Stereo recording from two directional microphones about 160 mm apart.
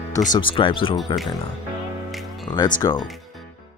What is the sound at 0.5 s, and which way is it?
Speech, 35° left (ahead or behind).